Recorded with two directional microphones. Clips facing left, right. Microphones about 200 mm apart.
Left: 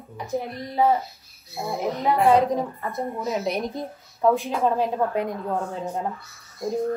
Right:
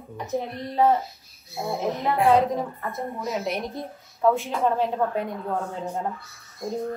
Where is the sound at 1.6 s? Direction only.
Centre (ahead or behind).